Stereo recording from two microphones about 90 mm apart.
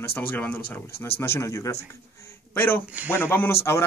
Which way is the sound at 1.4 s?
35° left (ahead or behind).